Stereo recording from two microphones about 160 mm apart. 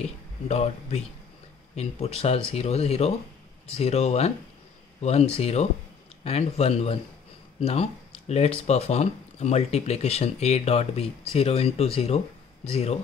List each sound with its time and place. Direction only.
0.5 s speech: 40° left (ahead or behind)